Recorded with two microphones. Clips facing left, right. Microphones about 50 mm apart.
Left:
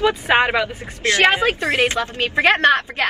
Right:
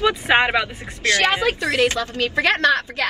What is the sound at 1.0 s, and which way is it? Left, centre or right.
A woman's voice, left.